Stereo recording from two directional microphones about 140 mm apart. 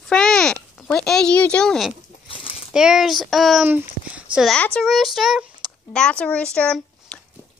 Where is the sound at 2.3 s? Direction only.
40° left (ahead or behind).